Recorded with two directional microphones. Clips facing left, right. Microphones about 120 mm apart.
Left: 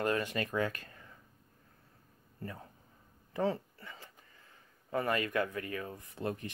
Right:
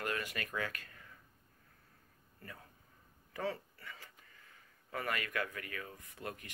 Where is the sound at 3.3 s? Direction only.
25° left (ahead or behind).